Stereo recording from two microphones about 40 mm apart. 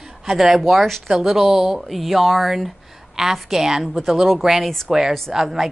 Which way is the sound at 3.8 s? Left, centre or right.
Centre.